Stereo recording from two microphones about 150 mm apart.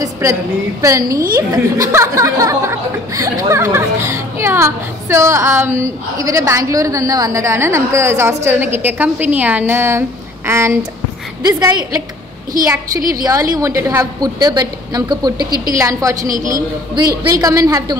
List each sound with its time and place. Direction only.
0.0 s a woman's voice: 20° right (ahead or behind)
17.3 s speech: 25° right (ahead or behind)